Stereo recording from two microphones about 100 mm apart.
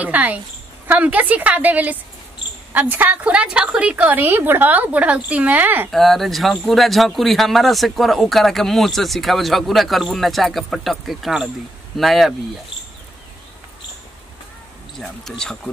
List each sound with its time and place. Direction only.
0.0 s a woman's voice: 15° right (ahead or behind)
5.9 s a man's voice: centre (ahead or behind)
15.0 s a man's voice: 5° left (ahead or behind)